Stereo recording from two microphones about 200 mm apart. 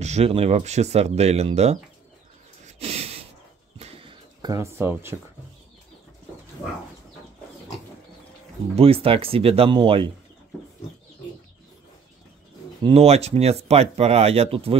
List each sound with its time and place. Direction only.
0.0 s speech: 35° right (ahead or behind)
2.6 s snort: 30° right (ahead or behind)
3.8 s a sound: 25° right (ahead or behind); by 5.1 s 10° right (ahead or behind)
8.7 s speech: 30° right (ahead or behind)
12.8 s speech: 30° right (ahead or behind)